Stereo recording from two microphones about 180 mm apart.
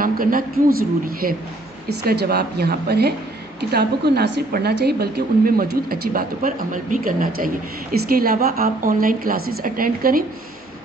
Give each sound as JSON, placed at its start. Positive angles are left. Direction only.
{"t": 0.0, "sound": "a woman's voice", "side_deg": -50}